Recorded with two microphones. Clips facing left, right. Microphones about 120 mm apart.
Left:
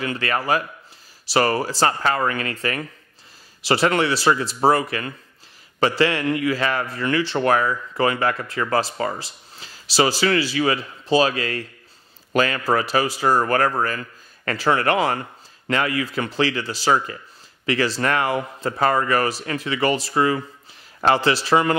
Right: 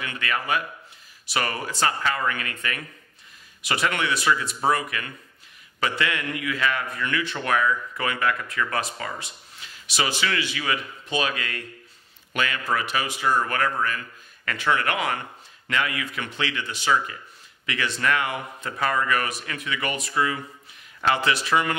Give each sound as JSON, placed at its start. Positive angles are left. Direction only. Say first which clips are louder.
{"t": 0.0, "sound": "a man's voice", "louder": "left 5 dB", "side_deg": 35}